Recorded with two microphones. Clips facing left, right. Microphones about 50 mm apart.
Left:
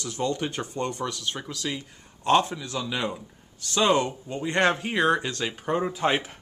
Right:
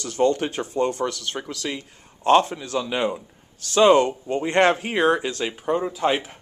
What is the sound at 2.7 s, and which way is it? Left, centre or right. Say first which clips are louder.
Speech: right 6 dB; right.